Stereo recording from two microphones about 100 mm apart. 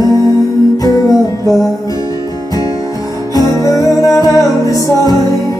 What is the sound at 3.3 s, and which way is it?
Music, 40° left (ahead or behind).